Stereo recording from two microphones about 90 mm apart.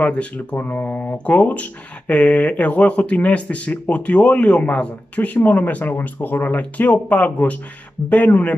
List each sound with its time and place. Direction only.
0.0 s speech: 15° left (ahead or behind)